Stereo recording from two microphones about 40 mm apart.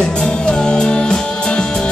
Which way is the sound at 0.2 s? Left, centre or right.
Centre.